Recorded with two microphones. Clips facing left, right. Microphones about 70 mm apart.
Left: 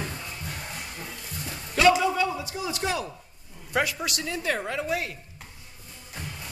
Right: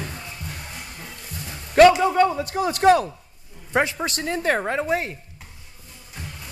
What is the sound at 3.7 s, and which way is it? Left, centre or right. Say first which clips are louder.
Speech: right 5 dB; right.